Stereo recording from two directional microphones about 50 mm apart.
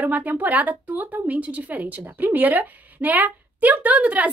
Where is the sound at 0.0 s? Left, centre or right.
Right.